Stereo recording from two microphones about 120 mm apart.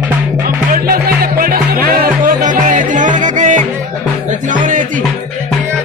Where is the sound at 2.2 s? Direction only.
90° right.